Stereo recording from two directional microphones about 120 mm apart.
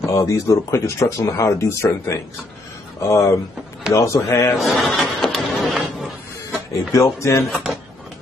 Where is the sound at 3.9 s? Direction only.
25° left (ahead or behind).